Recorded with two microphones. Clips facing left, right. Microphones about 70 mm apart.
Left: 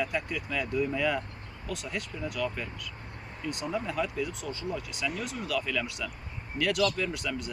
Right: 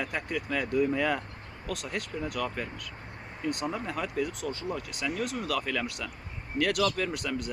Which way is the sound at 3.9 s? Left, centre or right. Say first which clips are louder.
Even; right.